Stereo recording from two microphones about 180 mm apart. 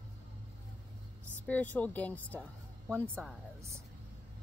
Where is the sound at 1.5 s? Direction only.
10° left (ahead or behind).